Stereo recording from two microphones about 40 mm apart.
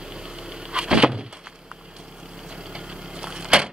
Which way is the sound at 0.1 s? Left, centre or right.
Right.